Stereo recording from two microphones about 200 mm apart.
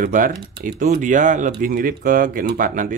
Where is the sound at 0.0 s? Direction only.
40° right (ahead or behind).